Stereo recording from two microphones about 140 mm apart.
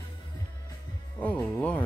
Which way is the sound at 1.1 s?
10° left (ahead or behind).